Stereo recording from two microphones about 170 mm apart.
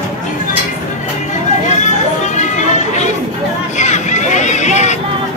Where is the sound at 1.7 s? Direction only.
45° left (ahead or behind).